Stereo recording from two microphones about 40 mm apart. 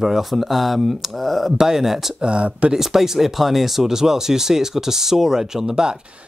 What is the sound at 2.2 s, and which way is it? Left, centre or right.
Speech, right.